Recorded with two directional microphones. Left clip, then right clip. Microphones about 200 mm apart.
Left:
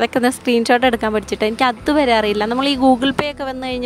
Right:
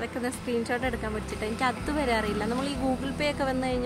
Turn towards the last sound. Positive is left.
turn(degrees=40)  # may be behind; listen again after turning